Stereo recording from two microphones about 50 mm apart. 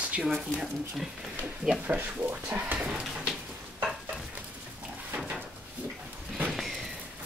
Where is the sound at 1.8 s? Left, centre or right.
Right.